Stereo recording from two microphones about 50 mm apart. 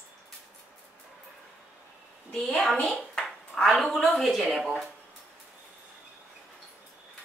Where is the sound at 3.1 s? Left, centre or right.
Centre.